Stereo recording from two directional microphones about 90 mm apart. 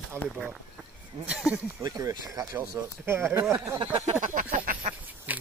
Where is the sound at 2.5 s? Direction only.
25° right (ahead or behind).